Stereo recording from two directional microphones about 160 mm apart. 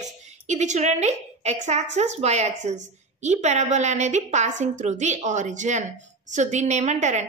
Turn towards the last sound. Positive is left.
turn(degrees=-45)  # may be behind; listen again after turning